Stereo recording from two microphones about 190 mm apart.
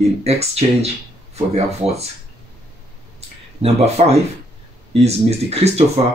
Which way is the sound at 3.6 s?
35° right (ahead or behind).